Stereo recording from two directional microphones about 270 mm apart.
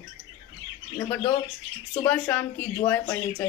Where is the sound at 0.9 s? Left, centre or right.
Centre.